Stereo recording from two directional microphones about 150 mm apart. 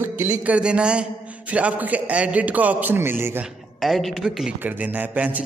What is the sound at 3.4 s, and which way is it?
A man's voice, centre (ahead or behind).